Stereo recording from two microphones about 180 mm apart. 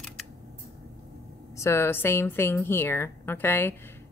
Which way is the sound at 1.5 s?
15° left (ahead or behind).